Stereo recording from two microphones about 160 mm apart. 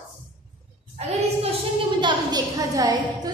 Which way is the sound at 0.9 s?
40° right (ahead or behind).